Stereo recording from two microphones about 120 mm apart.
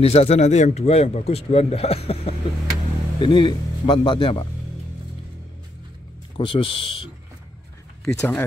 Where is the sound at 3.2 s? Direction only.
40° left (ahead or behind).